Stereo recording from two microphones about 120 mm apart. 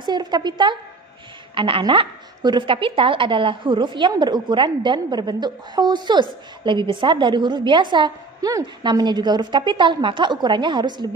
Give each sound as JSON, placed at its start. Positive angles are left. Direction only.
{"t": 0.0, "sound": "a woman's voice", "side_deg": -35}